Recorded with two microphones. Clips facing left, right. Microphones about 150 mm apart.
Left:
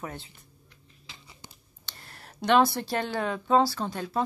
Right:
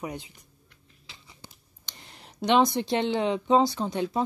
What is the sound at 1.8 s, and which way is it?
Speech, 15° right (ahead or behind).